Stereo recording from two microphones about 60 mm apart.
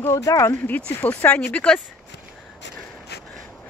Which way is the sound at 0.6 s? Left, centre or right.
Left.